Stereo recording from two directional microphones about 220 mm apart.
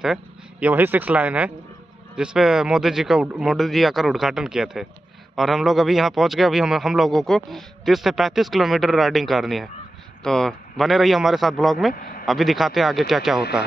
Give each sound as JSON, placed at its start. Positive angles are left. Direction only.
{"t": 0.0, "sound": "a man's voice", "side_deg": -5}
{"t": 11.9, "sound": "speech", "side_deg": 40}
{"t": 12.3, "sound": "a man's voice", "side_deg": 0}